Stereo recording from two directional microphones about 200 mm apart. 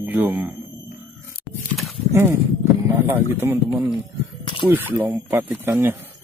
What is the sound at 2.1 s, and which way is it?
Speech, 10° right (ahead or behind).